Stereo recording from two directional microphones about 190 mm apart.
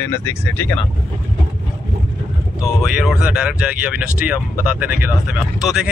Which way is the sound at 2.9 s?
5° right (ahead or behind).